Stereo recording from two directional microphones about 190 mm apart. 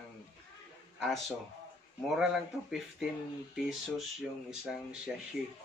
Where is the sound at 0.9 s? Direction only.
Centre (ahead or behind).